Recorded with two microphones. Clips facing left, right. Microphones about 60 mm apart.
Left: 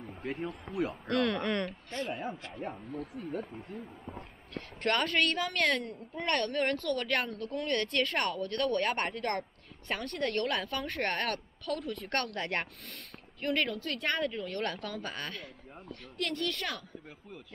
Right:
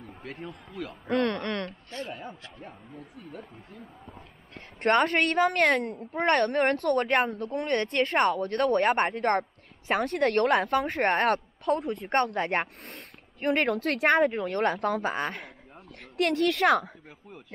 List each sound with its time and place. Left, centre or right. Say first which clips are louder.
0.0 s a sound: left 3 dB; centre
1.0 s speech: right 5 dB; centre
3.3 s speech: left 5 dB; centre
4.6 s a woman's voice: right 7 dB; right
9.8 s speech: right 9 dB; right
11.0 s a woman's voice: right 7 dB; right
12.4 s speech: right 7 dB; centre
13.4 s a woman's voice: right 6 dB; right
13.8 s speech: right 10 dB; right
14.2 s a woman's voice: right 9 dB; right
15.1 s speech: right 9 dB; right
16.2 s speech: right 10 dB; right